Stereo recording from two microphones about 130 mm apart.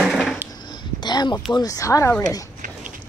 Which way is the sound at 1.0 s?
35° left (ahead or behind).